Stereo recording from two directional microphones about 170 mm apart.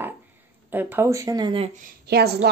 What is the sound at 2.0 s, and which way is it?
Speech, 70° right (ahead or behind).